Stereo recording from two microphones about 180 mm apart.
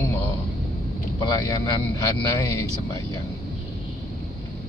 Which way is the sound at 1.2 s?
20° left (ahead or behind).